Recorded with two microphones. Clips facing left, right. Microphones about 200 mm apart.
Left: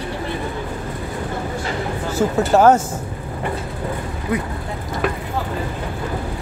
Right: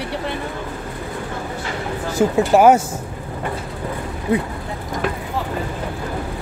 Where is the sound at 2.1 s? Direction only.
10° right (ahead or behind).